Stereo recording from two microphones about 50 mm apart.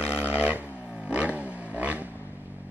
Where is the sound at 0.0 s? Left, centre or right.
Right.